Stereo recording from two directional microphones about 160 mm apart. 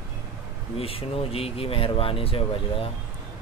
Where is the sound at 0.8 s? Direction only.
35° left (ahead or behind).